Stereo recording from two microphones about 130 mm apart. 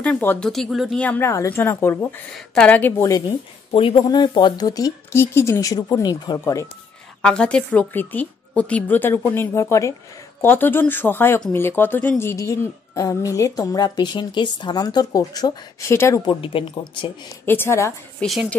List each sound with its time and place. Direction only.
0.0 s speech: 15° left (ahead or behind)
0.5 s speech: centre (ahead or behind)
0.9 s speech: 10° left (ahead or behind)
3.1 s speech: 30° left (ahead or behind)
3.7 s a woman's voice: 40° left (ahead or behind); by 6.7 s 25° left (ahead or behind)
7.2 s a woman's voice: 5° left (ahead or behind)
16.2 s speech: 40° left (ahead or behind)
17.5 s a woman's voice: 20° left (ahead or behind)
18.2 s speech: centre (ahead or behind)